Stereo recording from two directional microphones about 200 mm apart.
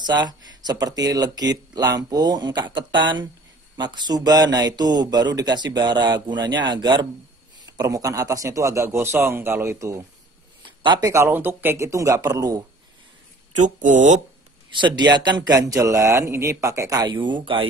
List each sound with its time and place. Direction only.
0.0 s a man's voice: 20° right (ahead or behind)
13.6 s speech: 40° right (ahead or behind)
14.7 s a man's voice: 25° right (ahead or behind)